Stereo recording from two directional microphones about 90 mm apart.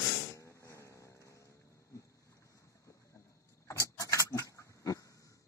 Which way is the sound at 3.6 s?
35° left (ahead or behind).